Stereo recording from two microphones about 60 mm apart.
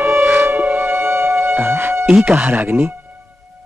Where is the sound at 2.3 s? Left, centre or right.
Right.